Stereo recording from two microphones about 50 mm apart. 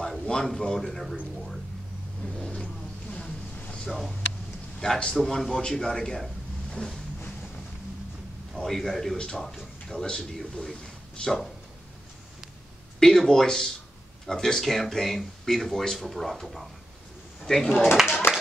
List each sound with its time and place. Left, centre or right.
0.4 s speech: centre
2.3 s vehicle: centre
4.7 s a man's voice: centre
8.5 s a man's voice: centre
13.0 s speech: centre
17.8 s speech: centre